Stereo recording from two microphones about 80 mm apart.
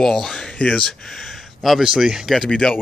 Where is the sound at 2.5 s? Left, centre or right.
Centre.